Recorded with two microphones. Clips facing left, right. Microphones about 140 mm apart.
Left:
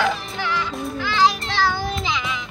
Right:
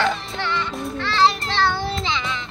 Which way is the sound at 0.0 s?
5° left (ahead or behind).